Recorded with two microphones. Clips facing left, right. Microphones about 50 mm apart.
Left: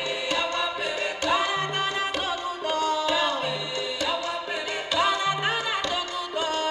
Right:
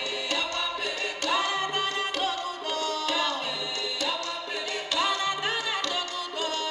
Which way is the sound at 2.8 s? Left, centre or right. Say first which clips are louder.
Left 4 dB; centre.